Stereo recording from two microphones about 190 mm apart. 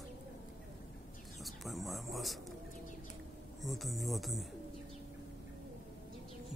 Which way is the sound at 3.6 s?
Centre (ahead or behind).